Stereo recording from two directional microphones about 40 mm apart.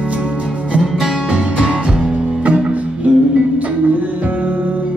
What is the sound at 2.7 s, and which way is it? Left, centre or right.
Music, right.